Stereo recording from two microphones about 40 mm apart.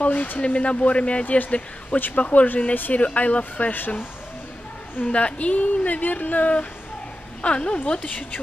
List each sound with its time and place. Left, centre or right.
0.0 s a woman's voice: left
1.2 s a woman's voice: left
5.0 s a woman's voice: left
7.4 s a woman's voice: left